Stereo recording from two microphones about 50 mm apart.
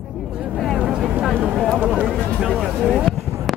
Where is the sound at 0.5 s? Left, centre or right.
Centre.